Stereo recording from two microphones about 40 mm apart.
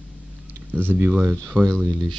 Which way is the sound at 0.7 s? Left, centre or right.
Right.